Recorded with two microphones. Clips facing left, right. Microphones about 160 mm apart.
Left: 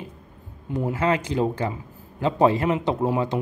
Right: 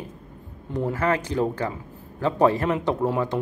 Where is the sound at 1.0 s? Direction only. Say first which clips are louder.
Left 1 dB; 20° left (ahead or behind).